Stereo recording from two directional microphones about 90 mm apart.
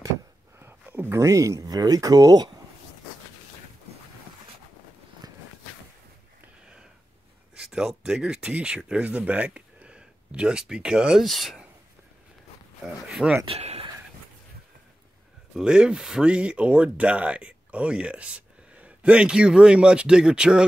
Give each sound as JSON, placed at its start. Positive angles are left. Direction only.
{"t": 0.6, "sound": "a sound", "side_deg": -25}
{"t": 1.1, "sound": "speech", "side_deg": -35}
{"t": 7.5, "sound": "speech", "side_deg": -5}
{"t": 12.8, "sound": "speech", "side_deg": -5}
{"t": 15.5, "sound": "speech", "side_deg": -10}